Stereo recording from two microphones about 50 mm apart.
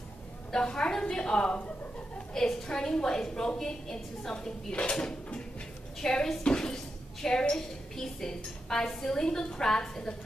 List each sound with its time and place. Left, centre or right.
0.5 s a woman's voice: centre